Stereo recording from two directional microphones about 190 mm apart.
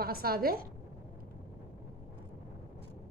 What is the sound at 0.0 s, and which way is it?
Speech, 55° right (ahead or behind).